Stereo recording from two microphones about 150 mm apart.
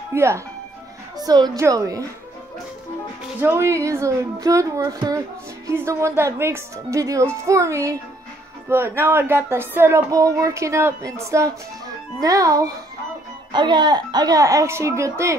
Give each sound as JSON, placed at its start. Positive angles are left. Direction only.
{"t": 0.1, "sound": "a woman's voice", "side_deg": -20}
{"t": 3.3, "sound": "a woman's voice", "side_deg": -15}